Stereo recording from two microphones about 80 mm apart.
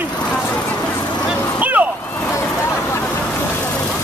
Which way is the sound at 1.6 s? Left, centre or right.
Right.